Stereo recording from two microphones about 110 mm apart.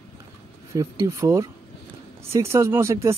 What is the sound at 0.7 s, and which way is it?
Speech, 30° right (ahead or behind).